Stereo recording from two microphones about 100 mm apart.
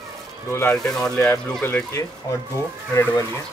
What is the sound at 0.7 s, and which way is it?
Speech, 5° left (ahead or behind).